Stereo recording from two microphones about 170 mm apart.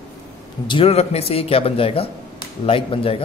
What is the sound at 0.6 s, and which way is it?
Speech, 30° left (ahead or behind).